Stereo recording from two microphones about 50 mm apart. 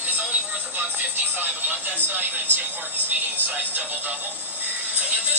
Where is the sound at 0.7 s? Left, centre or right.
Right.